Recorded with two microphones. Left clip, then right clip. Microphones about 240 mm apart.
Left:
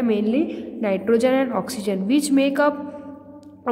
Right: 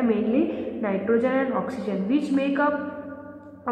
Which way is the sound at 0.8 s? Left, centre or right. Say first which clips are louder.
Left 5 dB; left.